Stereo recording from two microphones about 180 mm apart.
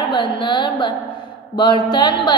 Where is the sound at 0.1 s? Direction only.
25° left (ahead or behind).